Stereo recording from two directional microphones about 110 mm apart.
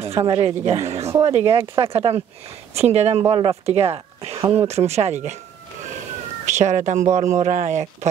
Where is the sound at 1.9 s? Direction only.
65° right (ahead or behind).